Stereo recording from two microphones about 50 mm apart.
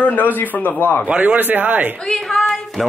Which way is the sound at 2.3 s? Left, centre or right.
Centre.